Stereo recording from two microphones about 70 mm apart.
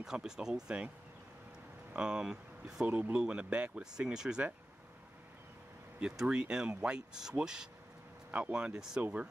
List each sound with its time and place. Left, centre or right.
0.0 s speech: centre
2.0 s speech: centre
5.9 s speech: centre
8.3 s speech: right